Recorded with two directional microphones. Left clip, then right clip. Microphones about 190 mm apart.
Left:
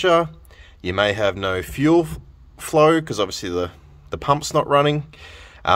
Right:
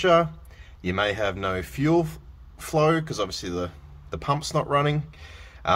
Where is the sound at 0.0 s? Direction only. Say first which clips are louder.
Left 3 dB; 30° left (ahead or behind).